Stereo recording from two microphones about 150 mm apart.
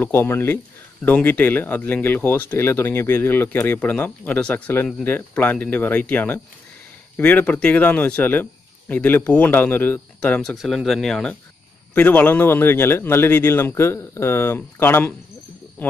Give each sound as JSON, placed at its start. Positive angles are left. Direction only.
{"t": 0.0, "sound": "speech", "side_deg": 15}
{"t": 10.5, "sound": "speech", "side_deg": 0}